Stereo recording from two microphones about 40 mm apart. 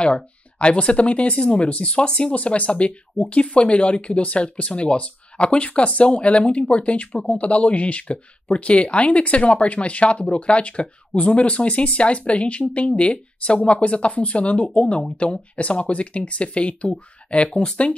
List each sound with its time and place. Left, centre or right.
0.0 s speech: left
2.3 s speech: left
17.5 s speech: centre